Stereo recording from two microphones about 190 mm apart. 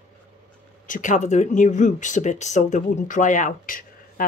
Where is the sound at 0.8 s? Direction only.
40° left (ahead or behind).